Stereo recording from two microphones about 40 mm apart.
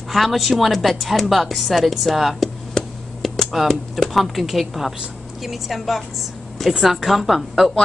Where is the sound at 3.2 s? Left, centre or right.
Centre.